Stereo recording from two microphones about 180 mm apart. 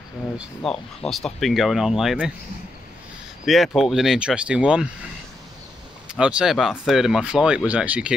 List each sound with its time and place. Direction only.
0.7 s speech: centre (ahead or behind)
3.4 s speech: centre (ahead or behind)
6.0 s speech: 5° right (ahead or behind)